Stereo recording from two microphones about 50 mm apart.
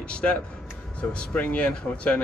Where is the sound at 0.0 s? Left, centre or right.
Left.